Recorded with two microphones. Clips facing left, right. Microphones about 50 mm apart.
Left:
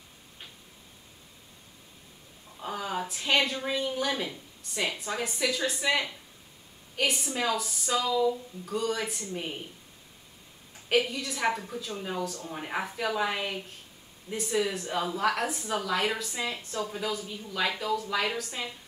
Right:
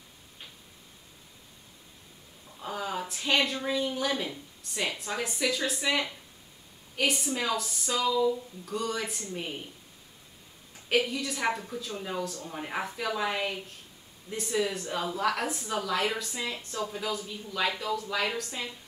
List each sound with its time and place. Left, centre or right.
2.6 s a sound: centre
3.0 s a woman's voice: centre
10.9 s a woman's voice: centre